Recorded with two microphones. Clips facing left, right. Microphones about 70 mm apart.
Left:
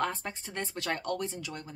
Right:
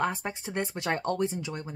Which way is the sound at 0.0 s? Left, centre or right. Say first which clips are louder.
Right 3 dB; centre.